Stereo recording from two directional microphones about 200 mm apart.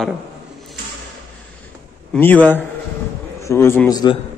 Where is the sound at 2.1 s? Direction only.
10° left (ahead or behind).